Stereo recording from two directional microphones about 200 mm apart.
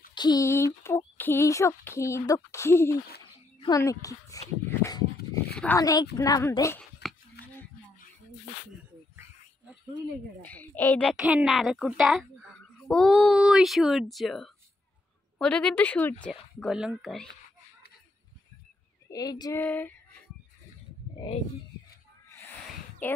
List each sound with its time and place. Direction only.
0.1 s speech: 20° left (ahead or behind)
4.6 s a sound: 15° left (ahead or behind)
5.8 s speech: 15° left (ahead or behind)
10.4 s speech: 10° left (ahead or behind)
19.0 s speech: 20° left (ahead or behind)
19.6 s speech: 10° left (ahead or behind)
21.2 s speech: 20° left (ahead or behind)
22.3 s a sound: 10° left (ahead or behind)